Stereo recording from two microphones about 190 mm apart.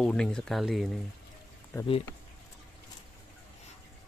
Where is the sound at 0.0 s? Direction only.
5° left (ahead or behind).